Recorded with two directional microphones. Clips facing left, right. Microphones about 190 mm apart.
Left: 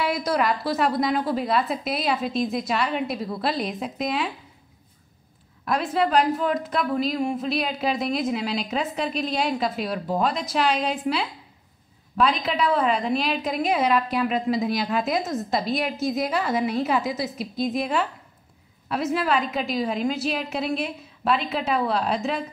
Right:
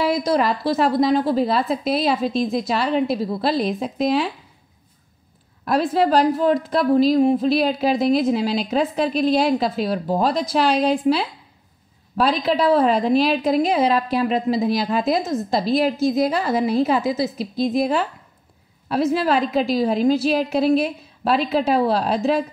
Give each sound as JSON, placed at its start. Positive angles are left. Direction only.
{"t": 0.0, "sound": "a woman's voice", "side_deg": -30}
{"t": 5.7, "sound": "a woman's voice", "side_deg": -35}